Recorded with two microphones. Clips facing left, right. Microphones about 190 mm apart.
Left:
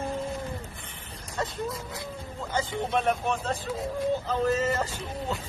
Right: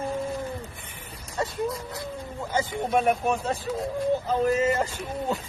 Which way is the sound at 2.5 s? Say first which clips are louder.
Right 3 dB; 15° right (ahead or behind).